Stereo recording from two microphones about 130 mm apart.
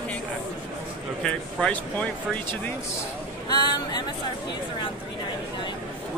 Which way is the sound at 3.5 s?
35° left (ahead or behind).